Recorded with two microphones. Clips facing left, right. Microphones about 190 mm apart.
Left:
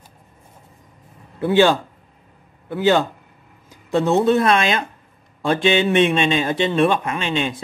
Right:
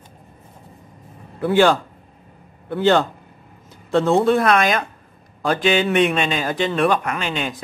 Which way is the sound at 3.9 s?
20° left (ahead or behind).